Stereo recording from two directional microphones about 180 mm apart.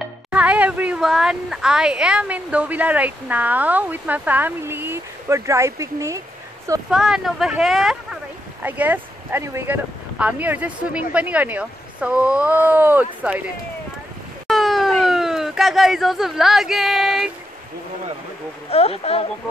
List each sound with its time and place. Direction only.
0.3 s speech: 5° right (ahead or behind)
6.9 s speech: 5° right (ahead or behind)
14.5 s a sound: centre (ahead or behind)
18.7 s speech: 35° left (ahead or behind)